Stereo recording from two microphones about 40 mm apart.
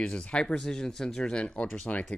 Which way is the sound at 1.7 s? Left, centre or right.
Left.